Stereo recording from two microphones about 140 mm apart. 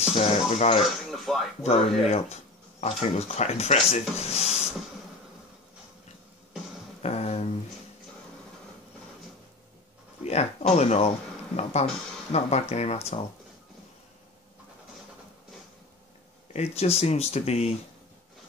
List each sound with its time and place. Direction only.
0.0 s speech: 45° left (ahead or behind)
1.0 s speech: centre (ahead or behind)
1.6 s speech: 50° left (ahead or behind)
7.0 s a sound: 50° left (ahead or behind)
10.2 s speech: 50° left (ahead or behind)
16.5 s speech: 50° left (ahead or behind)